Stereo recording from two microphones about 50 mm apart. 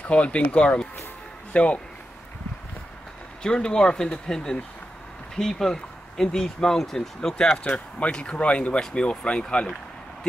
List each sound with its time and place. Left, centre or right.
0.1 s speech: left
3.4 s speech: centre
7.5 s speech: left